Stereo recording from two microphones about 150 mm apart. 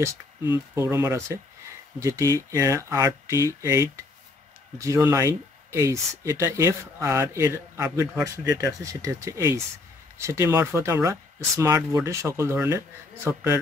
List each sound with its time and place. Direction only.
0.7 s speech: 20° right (ahead or behind)